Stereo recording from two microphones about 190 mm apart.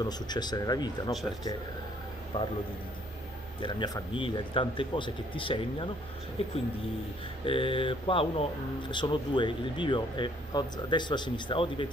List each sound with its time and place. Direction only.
0.0 s speech: 20° left (ahead or behind)
2.3 s speech: 25° left (ahead or behind)
3.6 s speech: 25° left (ahead or behind)